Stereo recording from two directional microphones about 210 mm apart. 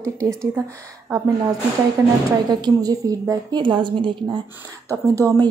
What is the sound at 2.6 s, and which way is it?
A woman's voice, 15° right (ahead or behind).